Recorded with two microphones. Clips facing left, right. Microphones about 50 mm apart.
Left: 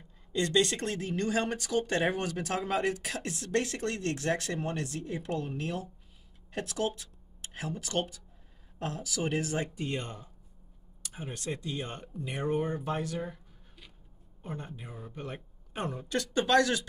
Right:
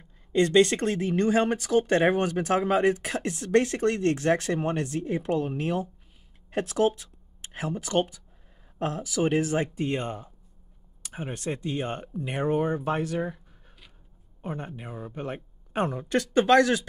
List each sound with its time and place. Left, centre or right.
0.3 s speech: right
14.4 s speech: right